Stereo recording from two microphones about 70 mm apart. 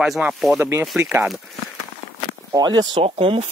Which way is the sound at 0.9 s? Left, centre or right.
Right.